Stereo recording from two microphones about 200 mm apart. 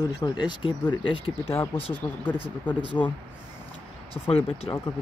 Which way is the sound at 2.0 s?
25° left (ahead or behind).